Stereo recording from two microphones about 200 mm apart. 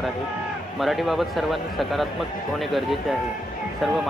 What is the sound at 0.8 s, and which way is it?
Speech, centre (ahead or behind).